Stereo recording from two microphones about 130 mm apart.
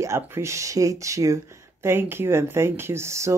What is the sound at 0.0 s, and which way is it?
Speech, 20° right (ahead or behind).